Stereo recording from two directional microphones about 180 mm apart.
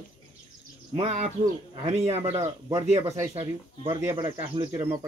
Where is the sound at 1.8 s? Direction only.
35° right (ahead or behind).